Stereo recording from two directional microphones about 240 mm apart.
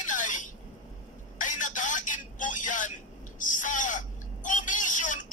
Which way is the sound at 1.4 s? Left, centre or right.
Left.